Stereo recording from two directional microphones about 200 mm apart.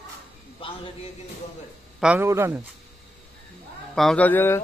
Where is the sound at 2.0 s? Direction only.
10° right (ahead or behind).